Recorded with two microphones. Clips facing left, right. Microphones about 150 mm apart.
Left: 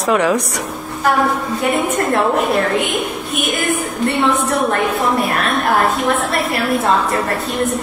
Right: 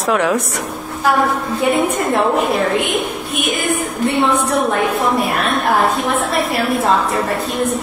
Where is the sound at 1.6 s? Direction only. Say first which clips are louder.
Right 2 dB; centre (ahead or behind).